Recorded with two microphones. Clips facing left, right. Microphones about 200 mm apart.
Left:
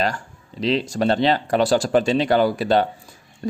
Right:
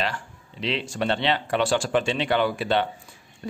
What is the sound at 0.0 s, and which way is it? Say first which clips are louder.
Speech: left 5 dB; 40° left (ahead or behind).